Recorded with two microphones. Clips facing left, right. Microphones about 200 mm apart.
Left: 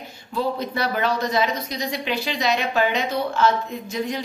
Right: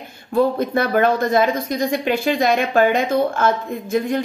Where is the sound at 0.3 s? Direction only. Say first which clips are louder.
Right 8 dB; 50° right (ahead or behind).